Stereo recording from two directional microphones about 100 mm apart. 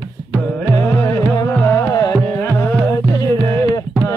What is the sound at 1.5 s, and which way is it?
Music, 20° left (ahead or behind).